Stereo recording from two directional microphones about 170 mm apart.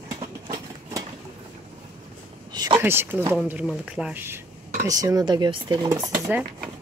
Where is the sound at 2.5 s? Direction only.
25° right (ahead or behind).